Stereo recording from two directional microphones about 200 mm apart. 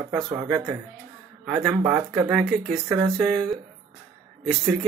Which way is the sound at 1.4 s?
Centre (ahead or behind).